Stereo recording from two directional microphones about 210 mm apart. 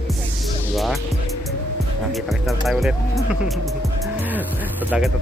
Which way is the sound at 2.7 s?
Centre (ahead or behind).